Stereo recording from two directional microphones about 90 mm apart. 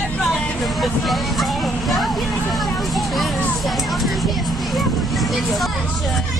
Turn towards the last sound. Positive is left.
turn(degrees=0)  # may be behind; listen again after turning